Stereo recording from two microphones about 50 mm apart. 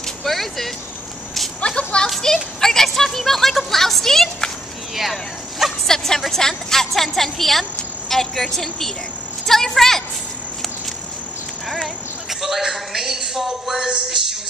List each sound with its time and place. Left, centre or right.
0.2 s vehicle: centre
1.8 s a sound: left
2.0 s speech: centre
4.9 s a sound: centre
5.9 s a woman's voice: centre
12.3 s speech: centre